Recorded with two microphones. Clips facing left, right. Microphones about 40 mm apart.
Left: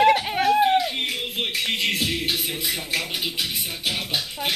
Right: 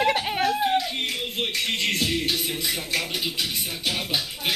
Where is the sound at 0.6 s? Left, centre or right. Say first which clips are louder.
Left 3 dB; centre.